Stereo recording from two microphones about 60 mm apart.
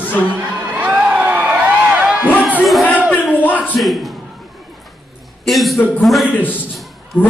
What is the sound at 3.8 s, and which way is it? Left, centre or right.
Speech, centre.